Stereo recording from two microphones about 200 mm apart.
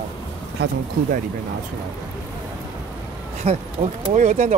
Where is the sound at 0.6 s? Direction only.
55° right (ahead or behind).